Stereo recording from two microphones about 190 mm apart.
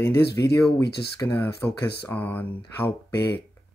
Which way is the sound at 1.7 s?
60° left (ahead or behind).